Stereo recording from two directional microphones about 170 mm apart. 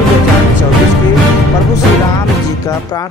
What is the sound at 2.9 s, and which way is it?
Speech, 25° left (ahead or behind).